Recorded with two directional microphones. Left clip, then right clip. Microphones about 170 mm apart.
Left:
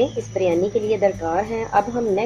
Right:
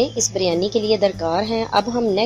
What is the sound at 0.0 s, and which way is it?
A woman's voice, 45° right (ahead or behind).